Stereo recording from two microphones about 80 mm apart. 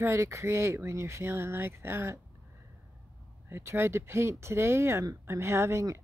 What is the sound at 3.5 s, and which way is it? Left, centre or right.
Speech, right.